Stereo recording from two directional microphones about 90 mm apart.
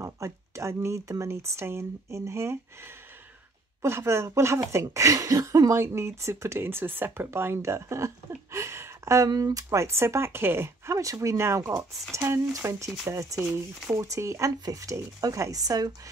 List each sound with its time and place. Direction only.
0.0 s speech: 35° right (ahead or behind)
3.8 s speech: 30° right (ahead or behind)
8.5 s a sound: 30° right (ahead or behind)
9.3 s speech: 45° right (ahead or behind)